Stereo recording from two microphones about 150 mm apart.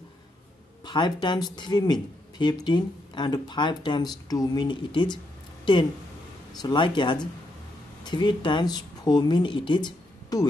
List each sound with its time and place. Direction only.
0.8 s speech: 30° left (ahead or behind)